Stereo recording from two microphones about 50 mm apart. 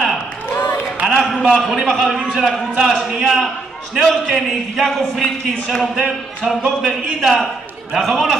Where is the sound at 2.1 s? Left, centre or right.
Centre.